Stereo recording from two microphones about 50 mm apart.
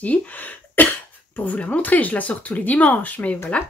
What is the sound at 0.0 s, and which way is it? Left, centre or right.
Cough, left.